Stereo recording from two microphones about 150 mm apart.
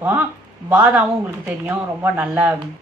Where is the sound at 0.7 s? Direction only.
10° right (ahead or behind).